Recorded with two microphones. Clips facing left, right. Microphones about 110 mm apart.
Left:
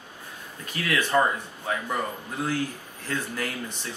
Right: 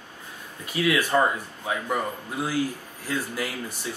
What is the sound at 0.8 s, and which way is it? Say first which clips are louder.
Speech: right 1 dB; 10° right (ahead or behind).